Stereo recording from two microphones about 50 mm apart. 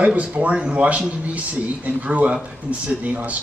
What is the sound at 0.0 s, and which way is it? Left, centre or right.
Speech, right.